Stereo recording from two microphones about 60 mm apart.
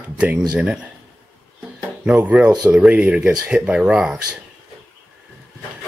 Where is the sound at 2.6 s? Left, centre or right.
Right.